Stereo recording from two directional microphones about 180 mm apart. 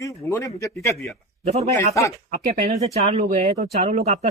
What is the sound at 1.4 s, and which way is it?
Speech, 35° right (ahead or behind).